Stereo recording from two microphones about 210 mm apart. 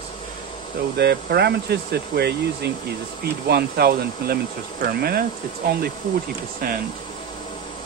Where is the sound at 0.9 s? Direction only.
50° right (ahead or behind).